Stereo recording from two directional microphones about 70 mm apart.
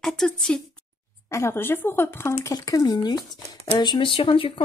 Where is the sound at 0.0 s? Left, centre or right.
Centre.